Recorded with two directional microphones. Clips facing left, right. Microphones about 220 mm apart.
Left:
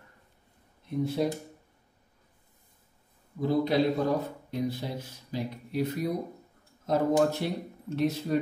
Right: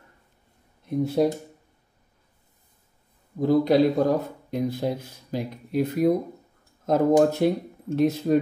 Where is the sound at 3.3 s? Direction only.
45° right (ahead or behind).